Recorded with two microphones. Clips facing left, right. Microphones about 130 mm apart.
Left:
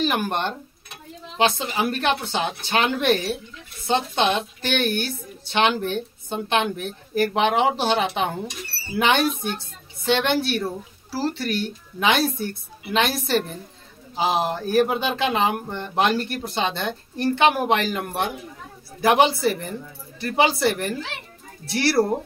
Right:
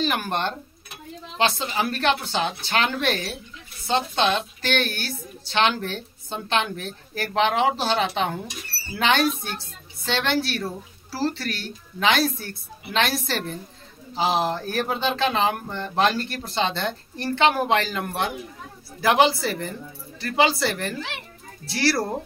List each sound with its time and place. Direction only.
0.0 s a woman's voice: 15° left (ahead or behind)